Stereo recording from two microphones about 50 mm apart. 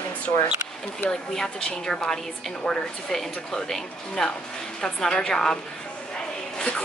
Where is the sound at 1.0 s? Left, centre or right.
Centre.